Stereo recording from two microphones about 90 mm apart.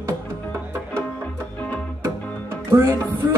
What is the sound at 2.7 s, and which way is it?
Music, 30° right (ahead or behind).